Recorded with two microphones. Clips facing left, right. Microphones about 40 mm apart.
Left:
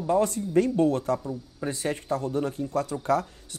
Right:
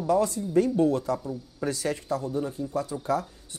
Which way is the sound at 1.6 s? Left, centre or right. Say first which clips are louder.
Even; left.